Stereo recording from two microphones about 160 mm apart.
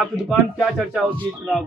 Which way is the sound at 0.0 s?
Centre (ahead or behind).